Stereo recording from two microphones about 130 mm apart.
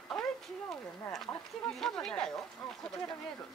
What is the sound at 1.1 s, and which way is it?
Speech, 5° left (ahead or behind).